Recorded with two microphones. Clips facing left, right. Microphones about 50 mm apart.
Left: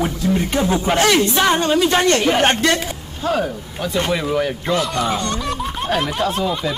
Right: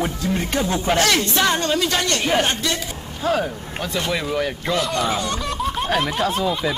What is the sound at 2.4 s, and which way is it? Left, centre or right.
Speech, left.